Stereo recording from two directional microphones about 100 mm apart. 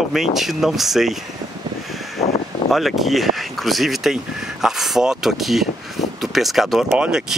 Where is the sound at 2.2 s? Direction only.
90° left.